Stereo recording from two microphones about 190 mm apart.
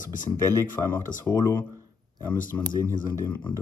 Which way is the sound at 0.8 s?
10° left (ahead or behind).